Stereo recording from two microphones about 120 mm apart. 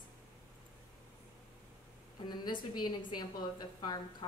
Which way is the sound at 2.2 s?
35° left (ahead or behind).